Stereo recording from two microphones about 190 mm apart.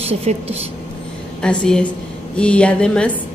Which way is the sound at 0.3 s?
35° right (ahead or behind).